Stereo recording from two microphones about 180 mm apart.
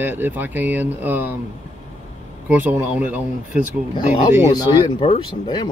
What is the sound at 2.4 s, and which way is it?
Speech, 10° right (ahead or behind).